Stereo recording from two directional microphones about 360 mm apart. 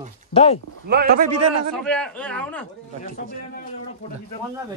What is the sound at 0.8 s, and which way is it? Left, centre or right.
Speech, right.